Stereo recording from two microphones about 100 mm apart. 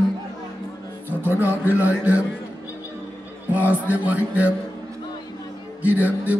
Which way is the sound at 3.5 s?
15° right (ahead or behind).